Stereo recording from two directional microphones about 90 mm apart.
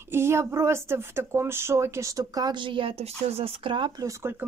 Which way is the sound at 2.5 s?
70° right (ahead or behind).